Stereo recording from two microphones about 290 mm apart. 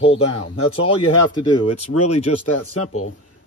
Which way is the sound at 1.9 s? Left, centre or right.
Left.